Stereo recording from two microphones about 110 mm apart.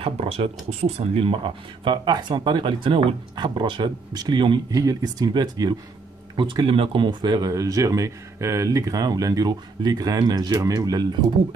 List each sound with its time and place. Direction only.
0.0 s speech: 65° right (ahead or behind); by 4.6 s 45° right (ahead or behind)
4.6 s speech: 35° right (ahead or behind)